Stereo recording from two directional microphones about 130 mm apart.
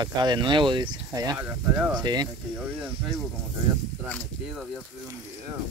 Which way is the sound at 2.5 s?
10° right (ahead or behind).